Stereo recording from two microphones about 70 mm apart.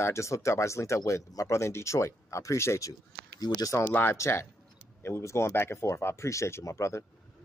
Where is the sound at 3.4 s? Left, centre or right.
Left.